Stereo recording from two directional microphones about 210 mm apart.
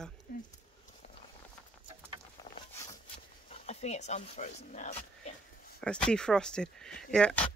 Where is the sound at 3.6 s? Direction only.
30° left (ahead or behind).